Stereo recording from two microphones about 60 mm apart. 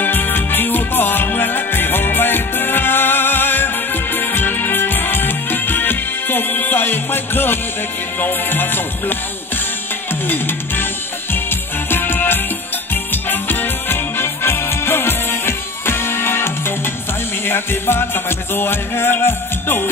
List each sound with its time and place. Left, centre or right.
0.0 s music: left
10.2 s music: left
11.9 s music: left